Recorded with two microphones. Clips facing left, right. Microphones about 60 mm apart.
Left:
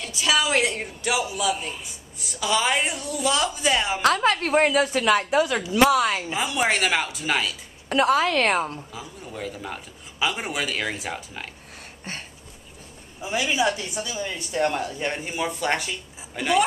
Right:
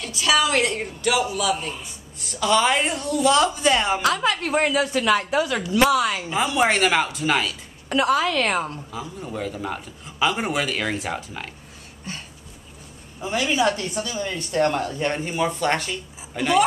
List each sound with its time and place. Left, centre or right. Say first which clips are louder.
0.1 s a woman's voice: right 2 dB; centre
4.0 s a woman's voice: left 1 dB; left
4.6 s a woman's voice: even; left
6.3 s a woman's voice: right 3 dB; centre
7.9 s a woman's voice: even; left
8.7 s a woman's voice: right 4 dB; centre
12.1 s a woman's voice: even; left
13.2 s speech: right 2 dB; centre